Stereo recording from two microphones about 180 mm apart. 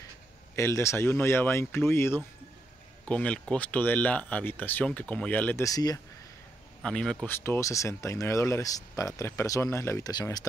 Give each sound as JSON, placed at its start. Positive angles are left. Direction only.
{"t": 0.6, "sound": "speech", "side_deg": 15}
{"t": 6.8, "sound": "speech", "side_deg": 5}